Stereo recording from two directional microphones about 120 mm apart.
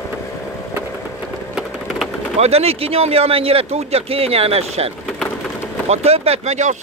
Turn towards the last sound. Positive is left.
turn(degrees=-70)  # may be behind; listen again after turning